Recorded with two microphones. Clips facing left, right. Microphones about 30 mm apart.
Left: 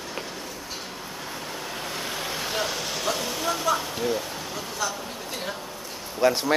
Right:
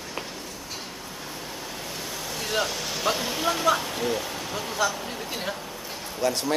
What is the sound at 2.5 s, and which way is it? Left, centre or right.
Vehicle, centre.